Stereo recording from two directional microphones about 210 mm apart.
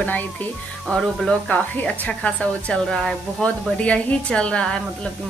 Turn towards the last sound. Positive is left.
turn(degrees=5)  # may be behind; listen again after turning